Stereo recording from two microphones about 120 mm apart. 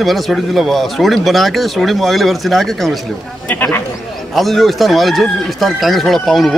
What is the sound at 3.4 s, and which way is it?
Speech, 15° left (ahead or behind).